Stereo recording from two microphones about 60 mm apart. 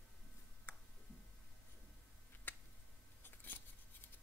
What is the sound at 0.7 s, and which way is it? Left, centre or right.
Tick, left.